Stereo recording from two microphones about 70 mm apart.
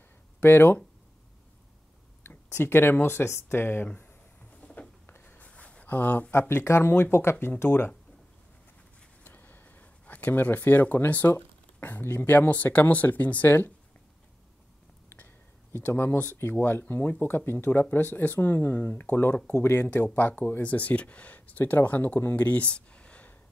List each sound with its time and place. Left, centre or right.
0.4 s speech: left
2.2 s a sound: left
6.3 s speech: left
9.2 s speech: left
15.0 s a sound: left
16.3 s speech: left